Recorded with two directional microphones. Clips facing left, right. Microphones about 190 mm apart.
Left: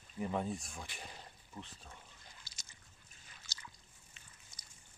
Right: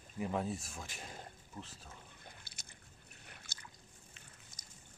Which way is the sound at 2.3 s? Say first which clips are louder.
Right 4 dB; 60° right (ahead or behind).